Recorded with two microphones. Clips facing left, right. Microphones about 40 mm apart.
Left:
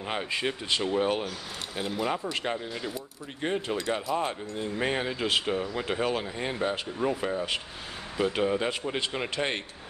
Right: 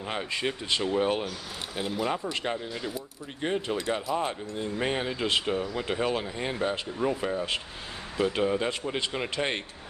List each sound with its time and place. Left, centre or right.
0.0 s speech: centre